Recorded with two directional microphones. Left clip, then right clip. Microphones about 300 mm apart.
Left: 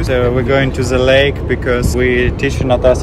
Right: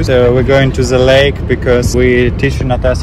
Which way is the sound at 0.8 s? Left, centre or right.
Right.